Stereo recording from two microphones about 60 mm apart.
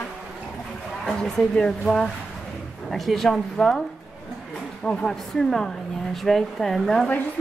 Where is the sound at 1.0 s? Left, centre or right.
Centre.